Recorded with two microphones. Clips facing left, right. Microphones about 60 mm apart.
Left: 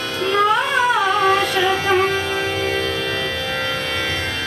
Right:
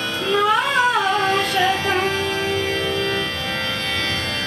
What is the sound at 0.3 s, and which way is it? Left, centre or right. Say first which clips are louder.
Carnatic music: left 1 dB; centre.